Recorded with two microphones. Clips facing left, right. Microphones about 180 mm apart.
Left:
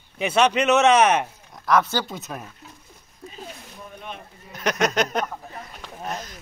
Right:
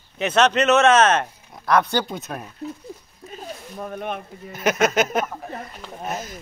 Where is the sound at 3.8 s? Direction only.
55° right (ahead or behind).